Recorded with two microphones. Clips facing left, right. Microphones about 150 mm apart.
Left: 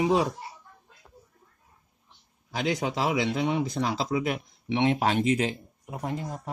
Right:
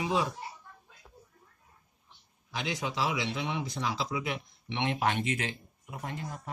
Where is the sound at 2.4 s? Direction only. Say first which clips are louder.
Left 7 dB; 45° left (ahead or behind).